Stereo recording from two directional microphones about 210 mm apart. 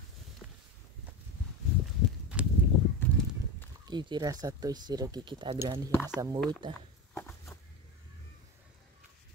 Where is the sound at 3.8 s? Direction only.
20° right (ahead or behind).